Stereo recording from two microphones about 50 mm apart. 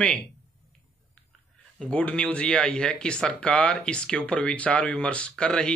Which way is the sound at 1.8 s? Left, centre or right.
Left.